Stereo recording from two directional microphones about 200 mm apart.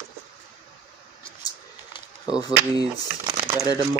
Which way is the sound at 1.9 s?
20° left (ahead or behind).